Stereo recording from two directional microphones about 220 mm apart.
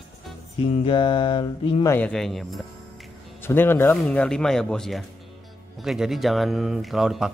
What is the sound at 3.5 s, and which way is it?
Speech, 10° left (ahead or behind).